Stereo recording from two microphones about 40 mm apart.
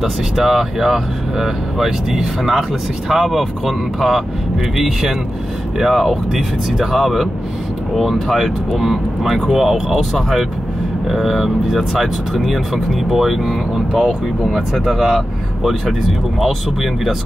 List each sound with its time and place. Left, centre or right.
0.0 s speech: centre